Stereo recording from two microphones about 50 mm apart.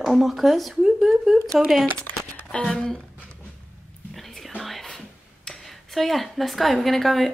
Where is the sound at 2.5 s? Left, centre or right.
Centre.